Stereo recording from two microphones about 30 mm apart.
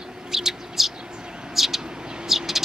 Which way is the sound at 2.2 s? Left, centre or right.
Centre.